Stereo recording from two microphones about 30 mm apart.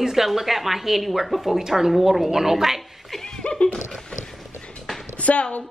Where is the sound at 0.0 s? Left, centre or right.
Centre.